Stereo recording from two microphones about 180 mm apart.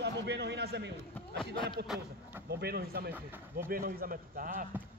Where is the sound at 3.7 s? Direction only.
55° right (ahead or behind).